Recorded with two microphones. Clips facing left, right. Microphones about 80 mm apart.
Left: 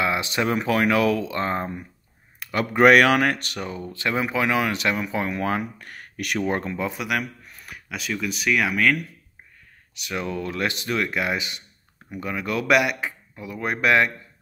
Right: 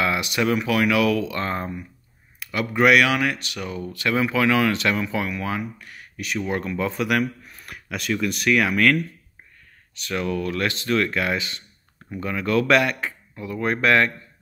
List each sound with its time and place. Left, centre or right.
0.0 s speech: left
2.4 s speech: left
3.6 s speech: left
5.2 s speech: left
6.4 s speech: left
6.9 s speech: centre
10.2 s speech: left